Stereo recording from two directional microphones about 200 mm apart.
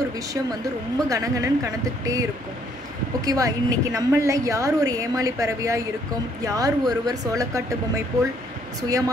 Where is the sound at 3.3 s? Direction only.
15° right (ahead or behind).